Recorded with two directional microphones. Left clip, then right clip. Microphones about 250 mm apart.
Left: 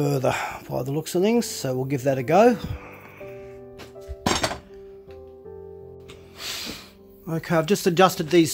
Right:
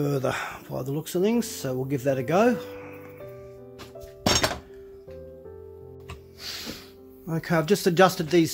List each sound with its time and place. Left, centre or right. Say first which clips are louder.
0.0 s speech: left 3 dB; centre
6.4 s music: left 4 dB; left
7.2 s speech: left 2 dB; centre